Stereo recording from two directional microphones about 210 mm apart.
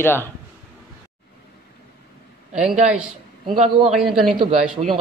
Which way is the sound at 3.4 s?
25° right (ahead or behind).